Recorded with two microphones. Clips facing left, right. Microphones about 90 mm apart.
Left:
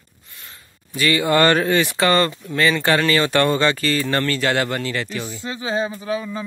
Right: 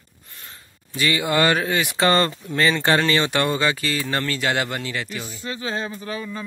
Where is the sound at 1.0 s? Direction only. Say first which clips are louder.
Left 4 dB; 15° right (ahead or behind).